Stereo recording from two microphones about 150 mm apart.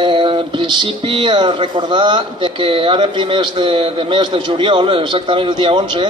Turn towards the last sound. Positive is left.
turn(degrees=-35)  # may be behind; listen again after turning